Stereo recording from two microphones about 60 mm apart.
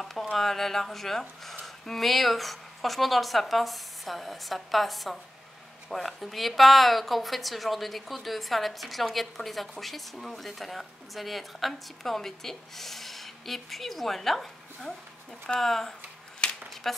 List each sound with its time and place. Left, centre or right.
0.0 s a woman's voice: centre
16.4 s a sound: centre
16.8 s a woman's voice: centre